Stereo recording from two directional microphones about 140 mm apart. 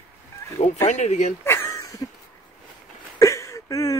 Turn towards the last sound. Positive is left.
turn(degrees=25)  # may be behind; listen again after turning